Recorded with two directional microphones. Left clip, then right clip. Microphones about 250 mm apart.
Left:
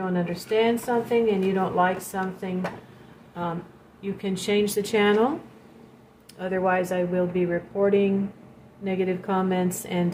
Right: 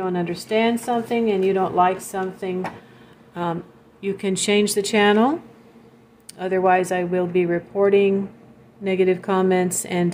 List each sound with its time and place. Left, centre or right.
0.1 s speech: right
4.0 s speech: right
6.3 s speech: right